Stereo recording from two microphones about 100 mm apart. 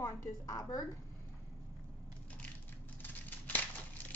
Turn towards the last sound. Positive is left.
turn(degrees=15)  # may be behind; listen again after turning